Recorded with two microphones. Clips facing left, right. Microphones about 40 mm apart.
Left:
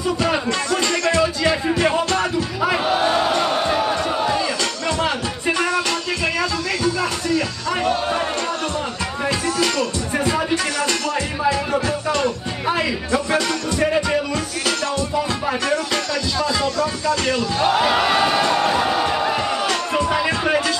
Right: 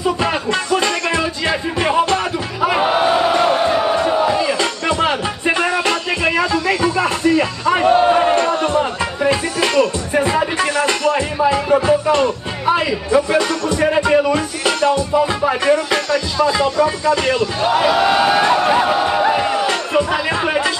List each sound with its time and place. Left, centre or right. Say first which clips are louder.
0.0 s music: right 2 dB; right
2.8 s battle cry: right 5 dB; right
3.5 s music: right 4 dB; centre
4.1 s battle cry: right 4 dB; centre
4.6 s music: right 4 dB; right
8.1 s a sound: right 8 dB; right
9.2 s music: right 3 dB; right
17.6 s battle cry: right 1 dB; centre
18.9 s a sound: right 4 dB; centre
20.1 s music: right 1 dB; centre